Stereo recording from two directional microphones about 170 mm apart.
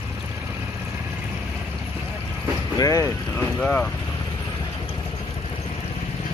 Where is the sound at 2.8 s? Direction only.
20° left (ahead or behind).